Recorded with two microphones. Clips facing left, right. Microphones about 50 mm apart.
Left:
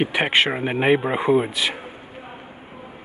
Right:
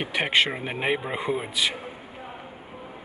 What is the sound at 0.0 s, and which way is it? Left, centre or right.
Speech, centre.